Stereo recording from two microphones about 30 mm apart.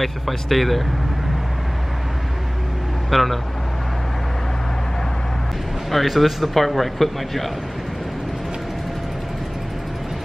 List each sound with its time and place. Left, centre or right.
0.0 s speech: centre
3.1 s speech: centre
5.9 s speech: centre